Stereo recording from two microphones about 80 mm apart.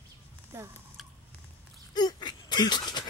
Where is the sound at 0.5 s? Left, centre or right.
Right.